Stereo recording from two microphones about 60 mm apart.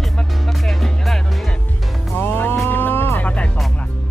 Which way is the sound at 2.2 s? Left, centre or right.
Left.